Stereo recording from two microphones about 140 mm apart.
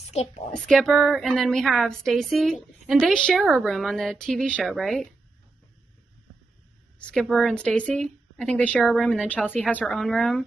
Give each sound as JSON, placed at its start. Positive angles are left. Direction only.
{"t": 0.1, "sound": "a woman's voice", "side_deg": 50}
{"t": 0.5, "sound": "a woman's voice", "side_deg": 5}
{"t": 7.0, "sound": "a woman's voice", "side_deg": 5}